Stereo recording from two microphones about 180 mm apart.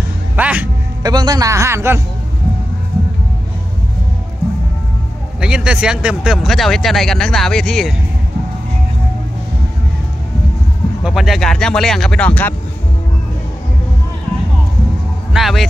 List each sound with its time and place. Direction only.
0.4 s speech: 10° right (ahead or behind)
1.0 s speech: 20° right (ahead or behind)
5.4 s speech: 5° right (ahead or behind)
11.1 s speech: centre (ahead or behind)
15.3 s speech: centre (ahead or behind)